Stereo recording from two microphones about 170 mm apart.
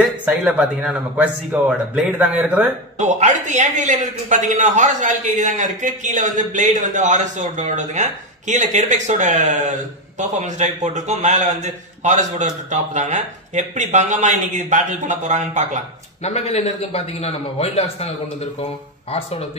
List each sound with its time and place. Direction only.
0.0 s a man's voice: 10° right (ahead or behind)
3.0 s a man's voice: 45° right (ahead or behind)
16.2 s a man's voice: 40° left (ahead or behind)